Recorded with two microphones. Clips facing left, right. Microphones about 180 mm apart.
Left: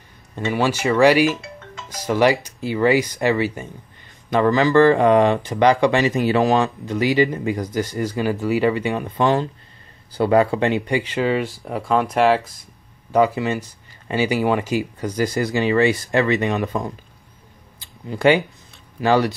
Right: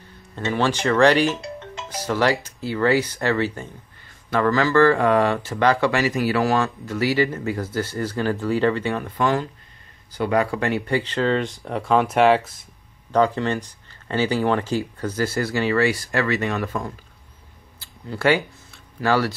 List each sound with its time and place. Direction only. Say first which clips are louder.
0.5 s speech: left 1 dB; 10° left (ahead or behind)
13.1 s speech: left 2 dB; 10° left (ahead or behind)
17.7 s a sound: left 2 dB; 15° left (ahead or behind)